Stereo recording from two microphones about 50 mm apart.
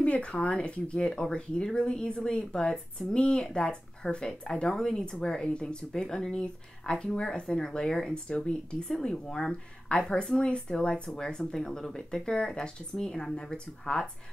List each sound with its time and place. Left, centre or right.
0.0 s speech: left